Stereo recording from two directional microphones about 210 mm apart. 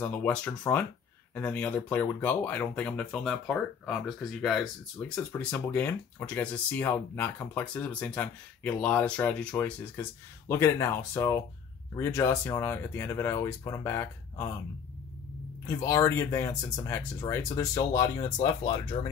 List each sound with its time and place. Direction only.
0.0 s speech: 10° left (ahead or behind)
15.6 s speech: 15° left (ahead or behind)